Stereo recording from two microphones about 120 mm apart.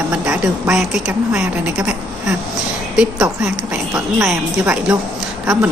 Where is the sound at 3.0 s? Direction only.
5° right (ahead or behind).